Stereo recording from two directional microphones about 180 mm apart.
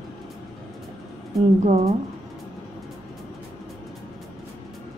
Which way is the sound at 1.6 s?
35° right (ahead or behind).